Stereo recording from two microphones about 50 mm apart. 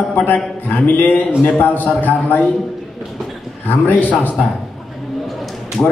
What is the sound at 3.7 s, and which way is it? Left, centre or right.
Speech, left.